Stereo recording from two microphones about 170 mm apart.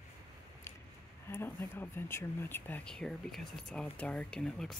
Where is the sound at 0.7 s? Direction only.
15° left (ahead or behind).